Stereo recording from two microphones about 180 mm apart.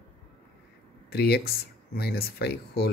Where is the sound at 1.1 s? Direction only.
65° left (ahead or behind).